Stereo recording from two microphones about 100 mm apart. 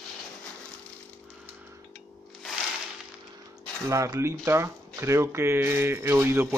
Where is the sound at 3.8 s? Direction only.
30° right (ahead or behind).